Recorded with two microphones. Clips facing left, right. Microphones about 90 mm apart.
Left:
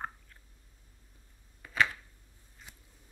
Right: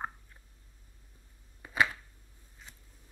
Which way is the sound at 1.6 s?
20° right (ahead or behind).